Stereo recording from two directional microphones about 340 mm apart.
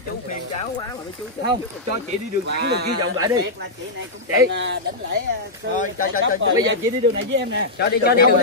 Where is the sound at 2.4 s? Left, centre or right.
Right.